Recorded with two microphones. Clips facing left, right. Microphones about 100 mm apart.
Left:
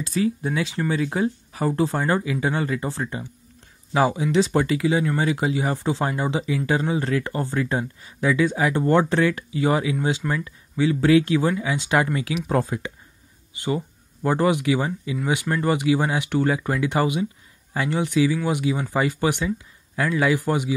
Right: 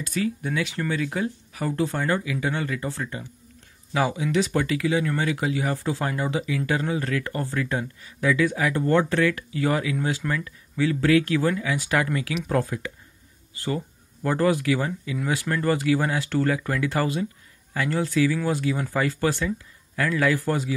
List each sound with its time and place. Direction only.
0.0 s speech: 30° left (ahead or behind)